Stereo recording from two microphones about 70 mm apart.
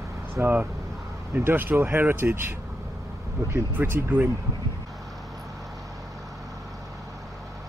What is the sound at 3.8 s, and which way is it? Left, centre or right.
Speech, right.